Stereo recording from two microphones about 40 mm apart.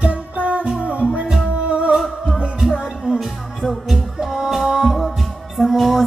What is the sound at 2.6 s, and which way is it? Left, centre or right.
Music, centre.